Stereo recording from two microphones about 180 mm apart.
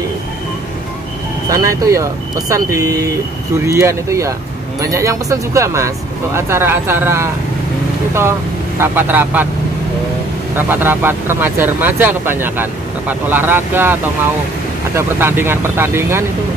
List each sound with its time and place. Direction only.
1.5 s speech: 20° right (ahead or behind)
10.7 s speech: 10° right (ahead or behind)
15.0 s speech: 15° right (ahead or behind)